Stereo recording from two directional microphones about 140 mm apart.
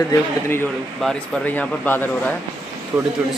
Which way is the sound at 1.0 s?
10° left (ahead or behind).